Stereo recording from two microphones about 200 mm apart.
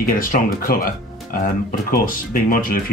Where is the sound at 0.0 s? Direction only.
45° left (ahead or behind).